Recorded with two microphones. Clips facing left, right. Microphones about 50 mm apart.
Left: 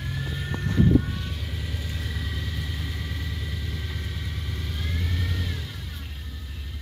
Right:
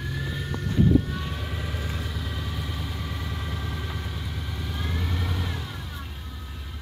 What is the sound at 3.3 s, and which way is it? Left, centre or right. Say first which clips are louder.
Vehicle: right 2 dB; right.